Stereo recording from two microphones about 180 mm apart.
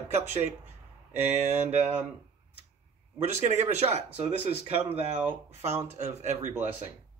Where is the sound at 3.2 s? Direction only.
40° right (ahead or behind).